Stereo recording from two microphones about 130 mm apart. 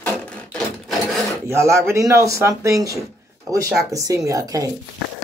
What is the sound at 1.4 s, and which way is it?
Speech, 20° right (ahead or behind).